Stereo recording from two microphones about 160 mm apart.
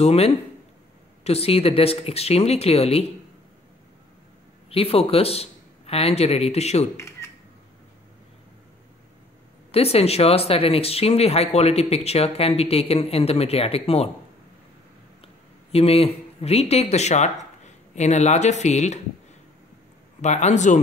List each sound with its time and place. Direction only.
0.0 s speech: 40° left (ahead or behind)
4.6 s a man's voice: 35° left (ahead or behind)
7.0 s camera: 15° left (ahead or behind)
9.7 s speech: 40° left (ahead or behind)
15.7 s speech: 40° left (ahead or behind)
20.2 s speech: 45° left (ahead or behind)